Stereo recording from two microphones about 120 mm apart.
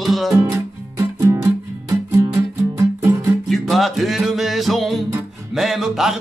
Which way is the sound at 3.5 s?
Centre (ahead or behind).